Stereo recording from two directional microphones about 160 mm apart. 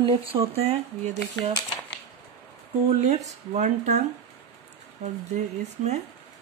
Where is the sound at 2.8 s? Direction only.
45° right (ahead or behind).